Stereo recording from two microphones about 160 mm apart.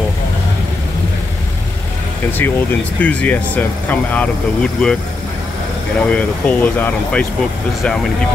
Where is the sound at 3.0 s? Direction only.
10° left (ahead or behind).